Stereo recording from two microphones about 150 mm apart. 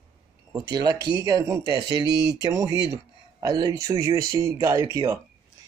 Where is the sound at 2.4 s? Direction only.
25° right (ahead or behind).